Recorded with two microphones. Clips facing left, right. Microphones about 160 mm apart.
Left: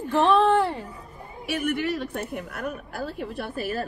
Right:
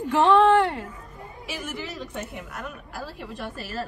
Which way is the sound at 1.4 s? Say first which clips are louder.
Left 8 dB; 60° left (ahead or behind).